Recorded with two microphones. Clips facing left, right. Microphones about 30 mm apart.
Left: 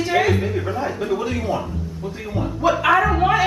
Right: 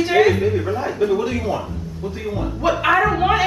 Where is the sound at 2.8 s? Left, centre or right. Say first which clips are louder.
Right 1 dB; centre.